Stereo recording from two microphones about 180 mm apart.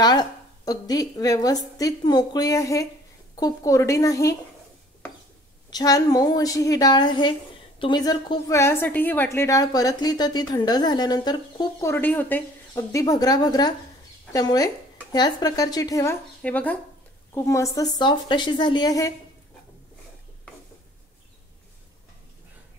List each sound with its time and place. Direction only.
0.0 s a woman's voice: 20° left (ahead or behind)
5.7 s a woman's voice: 20° left (ahead or behind)
11.9 s a woman's voice: 10° left (ahead or behind)